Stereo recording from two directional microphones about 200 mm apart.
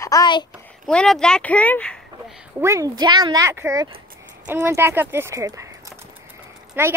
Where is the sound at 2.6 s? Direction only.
15° right (ahead or behind).